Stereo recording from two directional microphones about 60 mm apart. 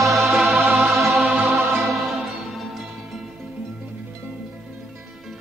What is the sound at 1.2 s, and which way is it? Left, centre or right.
Music, right.